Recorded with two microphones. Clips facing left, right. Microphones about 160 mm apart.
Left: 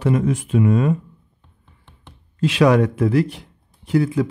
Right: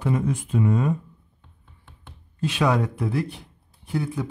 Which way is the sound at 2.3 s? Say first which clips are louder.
Left 7 dB; 90° left.